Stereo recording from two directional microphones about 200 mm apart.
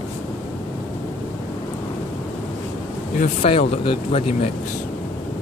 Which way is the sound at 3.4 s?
25° left (ahead or behind).